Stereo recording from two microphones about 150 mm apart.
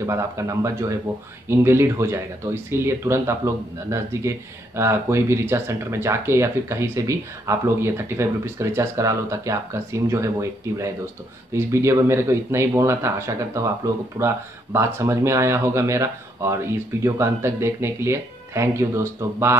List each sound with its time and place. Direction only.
0.0 s speech: 20° right (ahead or behind)